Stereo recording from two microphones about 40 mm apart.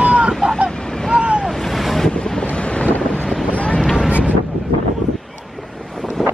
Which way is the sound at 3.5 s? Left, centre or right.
Left.